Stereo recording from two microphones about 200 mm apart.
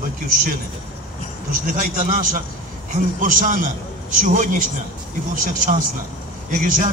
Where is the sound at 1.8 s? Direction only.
40° right (ahead or behind).